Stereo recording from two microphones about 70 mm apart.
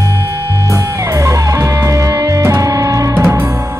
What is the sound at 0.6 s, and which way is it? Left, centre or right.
Music, right.